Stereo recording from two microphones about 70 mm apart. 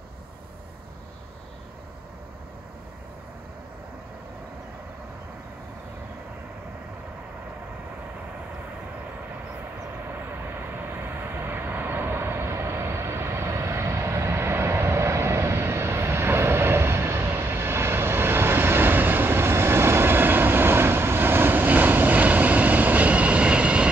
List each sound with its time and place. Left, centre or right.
10.1 s vehicle: right; by 23.9 s centre